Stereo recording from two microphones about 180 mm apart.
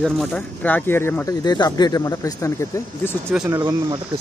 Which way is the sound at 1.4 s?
20° left (ahead or behind).